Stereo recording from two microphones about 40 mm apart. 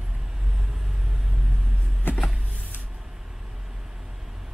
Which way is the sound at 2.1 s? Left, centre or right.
Left.